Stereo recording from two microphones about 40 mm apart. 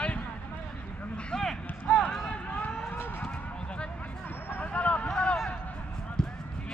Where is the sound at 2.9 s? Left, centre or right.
Left.